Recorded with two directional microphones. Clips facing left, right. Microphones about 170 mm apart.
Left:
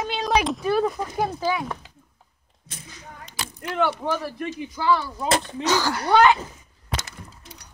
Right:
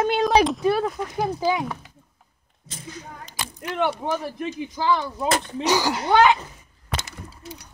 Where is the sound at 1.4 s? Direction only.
20° right (ahead or behind).